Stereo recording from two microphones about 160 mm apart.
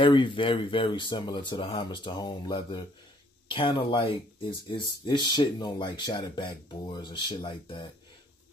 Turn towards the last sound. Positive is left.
turn(degrees=30)  # may be behind; listen again after turning